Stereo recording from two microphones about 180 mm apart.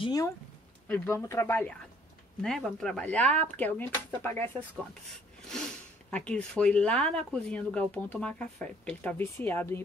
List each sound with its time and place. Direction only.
0.0 s speech: 20° left (ahead or behind)
5.5 s speech: 5° left (ahead or behind)